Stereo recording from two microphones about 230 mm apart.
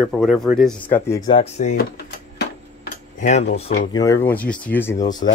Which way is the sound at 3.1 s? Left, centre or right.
Left.